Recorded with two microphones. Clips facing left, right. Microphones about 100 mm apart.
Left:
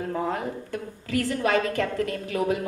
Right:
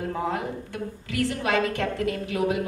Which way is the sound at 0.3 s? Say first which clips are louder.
Left 1 dB; 40° left (ahead or behind).